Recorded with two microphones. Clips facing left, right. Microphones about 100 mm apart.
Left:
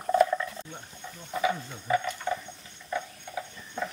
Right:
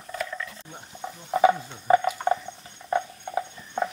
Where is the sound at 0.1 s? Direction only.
30° left (ahead or behind).